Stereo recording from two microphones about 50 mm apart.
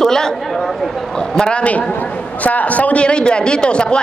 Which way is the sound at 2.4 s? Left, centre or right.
Left.